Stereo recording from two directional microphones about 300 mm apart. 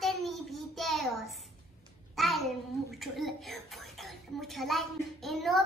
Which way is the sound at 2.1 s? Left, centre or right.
Centre.